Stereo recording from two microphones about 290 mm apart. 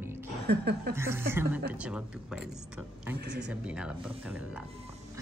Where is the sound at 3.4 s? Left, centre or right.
Centre.